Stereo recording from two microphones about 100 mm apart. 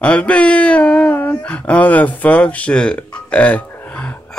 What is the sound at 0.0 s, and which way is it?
Speech, 10° left (ahead or behind).